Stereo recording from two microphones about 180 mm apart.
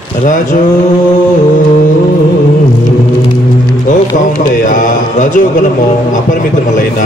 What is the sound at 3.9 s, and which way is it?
Speech, 45° left (ahead or behind).